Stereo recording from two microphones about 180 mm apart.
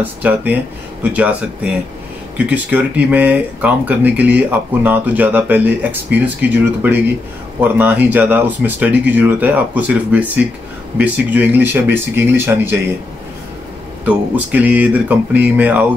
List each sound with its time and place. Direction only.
0.0 s speech: 10° right (ahead or behind)
14.0 s speech: 10° right (ahead or behind)